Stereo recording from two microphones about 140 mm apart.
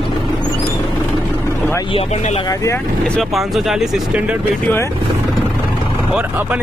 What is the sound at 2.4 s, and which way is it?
Speech, 25° left (ahead or behind).